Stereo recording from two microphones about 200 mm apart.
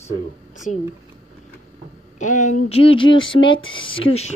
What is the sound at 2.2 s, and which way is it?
Speech, 40° left (ahead or behind).